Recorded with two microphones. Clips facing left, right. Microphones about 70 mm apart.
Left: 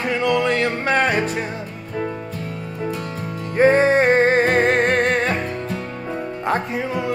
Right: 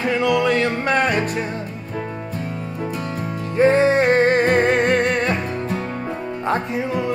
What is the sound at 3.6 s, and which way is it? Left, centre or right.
Music, left.